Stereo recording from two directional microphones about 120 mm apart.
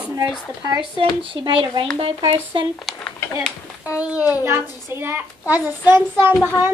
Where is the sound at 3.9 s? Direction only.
10° right (ahead or behind).